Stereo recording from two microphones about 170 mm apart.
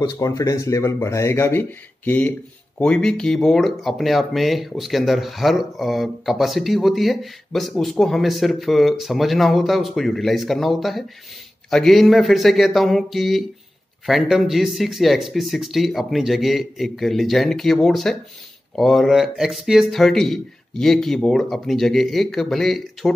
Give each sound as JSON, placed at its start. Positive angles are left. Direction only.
{"t": 0.0, "sound": "speech", "side_deg": 20}